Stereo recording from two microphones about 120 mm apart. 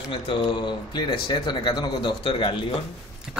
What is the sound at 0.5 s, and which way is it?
Speech, 40° left (ahead or behind).